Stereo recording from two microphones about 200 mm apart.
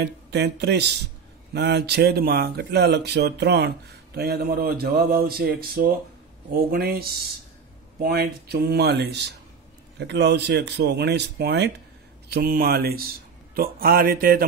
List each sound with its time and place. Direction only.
0.0 s speech: 60° right (ahead or behind)